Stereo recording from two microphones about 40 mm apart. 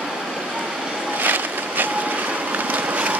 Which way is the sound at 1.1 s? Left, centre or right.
Right.